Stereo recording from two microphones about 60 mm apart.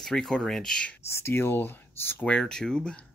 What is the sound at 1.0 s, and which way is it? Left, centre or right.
Speech, left.